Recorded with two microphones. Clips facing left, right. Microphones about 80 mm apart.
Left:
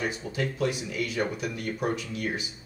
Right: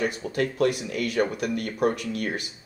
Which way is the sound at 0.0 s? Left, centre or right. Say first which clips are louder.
Right 4 dB; right.